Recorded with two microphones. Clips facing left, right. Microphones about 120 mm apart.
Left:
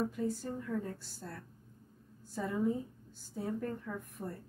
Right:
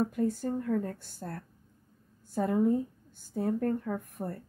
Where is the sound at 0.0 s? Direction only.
55° right (ahead or behind).